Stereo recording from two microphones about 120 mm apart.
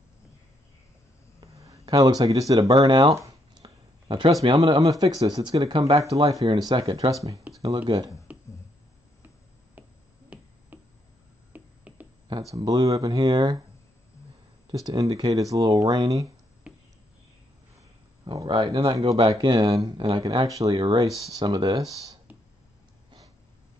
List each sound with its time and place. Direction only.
1.4 s speech: 30° right (ahead or behind)
3.2 s a sound: 30° right (ahead or behind)
4.6 s speech: 35° right (ahead or behind)
5.9 s speech: 30° right (ahead or behind)
6.4 s speech: 40° right (ahead or behind)
8.3 s a sound: 10° right (ahead or behind)
10.3 s finger snapping: 10° right (ahead or behind)
10.7 s a sound: 15° right (ahead or behind)
12.3 s speech: 30° right (ahead or behind)
14.7 s speech: 30° right (ahead or behind)
18.2 s speech: 35° right (ahead or behind)